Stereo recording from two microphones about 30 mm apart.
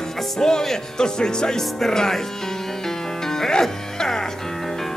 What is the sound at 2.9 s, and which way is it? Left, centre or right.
Music, centre.